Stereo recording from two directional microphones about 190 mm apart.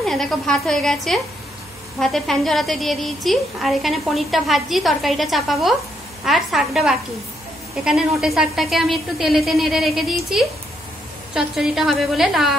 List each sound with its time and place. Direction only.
0.0 s a woman's voice: centre (ahead or behind)
8.2 s a woman's voice: centre (ahead or behind)